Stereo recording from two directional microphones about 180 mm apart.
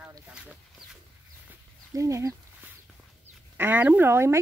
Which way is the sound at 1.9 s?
15° right (ahead or behind).